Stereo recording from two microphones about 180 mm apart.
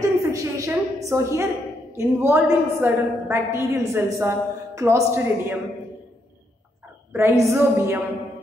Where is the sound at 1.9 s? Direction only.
10° right (ahead or behind).